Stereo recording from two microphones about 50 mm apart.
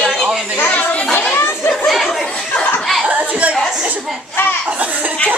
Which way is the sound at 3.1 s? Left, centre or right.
Right.